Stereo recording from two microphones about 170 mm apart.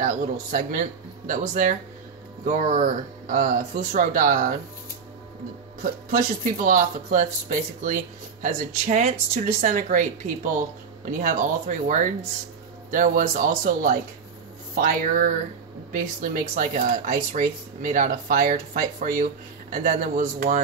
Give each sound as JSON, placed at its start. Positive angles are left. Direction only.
{"t": 0.0, "sound": "speech", "side_deg": -50}
{"t": 5.8, "sound": "speech", "side_deg": -55}